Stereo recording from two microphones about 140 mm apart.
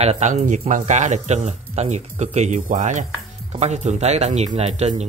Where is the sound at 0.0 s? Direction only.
55° right (ahead or behind).